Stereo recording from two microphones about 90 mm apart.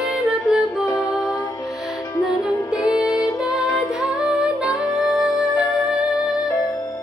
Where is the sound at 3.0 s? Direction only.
5° right (ahead or behind).